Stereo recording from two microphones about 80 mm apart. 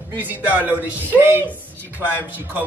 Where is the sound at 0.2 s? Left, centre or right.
Right.